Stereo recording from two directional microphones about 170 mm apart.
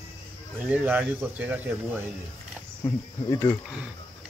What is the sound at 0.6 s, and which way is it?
A man's voice, 10° right (ahead or behind).